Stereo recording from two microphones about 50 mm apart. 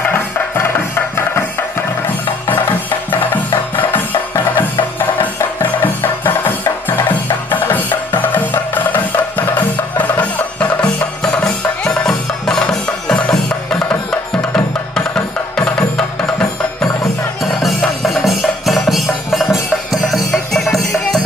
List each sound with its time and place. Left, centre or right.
0.1 s music: left
4.6 s music: left
11.4 s music: centre
17.4 s music: centre